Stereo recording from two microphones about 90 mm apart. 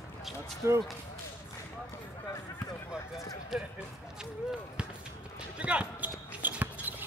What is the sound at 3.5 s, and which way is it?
Speech, 5° right (ahead or behind).